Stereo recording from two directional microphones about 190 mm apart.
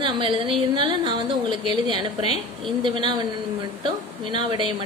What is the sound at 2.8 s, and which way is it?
Speech, 25° right (ahead or behind).